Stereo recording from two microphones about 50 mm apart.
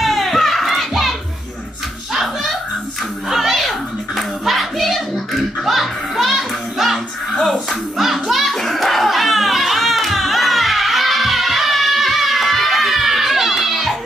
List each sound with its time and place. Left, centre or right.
0.0 s music: centre
3.3 s a sound: centre
4.2 s hands: centre
8.0 s children playing: centre